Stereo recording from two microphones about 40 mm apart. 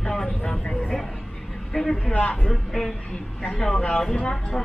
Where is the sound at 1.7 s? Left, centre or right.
Centre.